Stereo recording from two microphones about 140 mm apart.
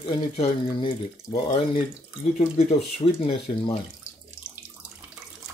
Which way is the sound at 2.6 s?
50° left (ahead or behind).